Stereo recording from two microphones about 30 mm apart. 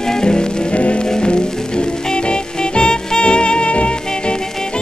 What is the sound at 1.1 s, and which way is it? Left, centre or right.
Music, left.